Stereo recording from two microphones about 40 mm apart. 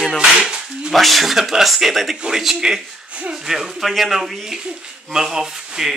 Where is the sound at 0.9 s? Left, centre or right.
Centre.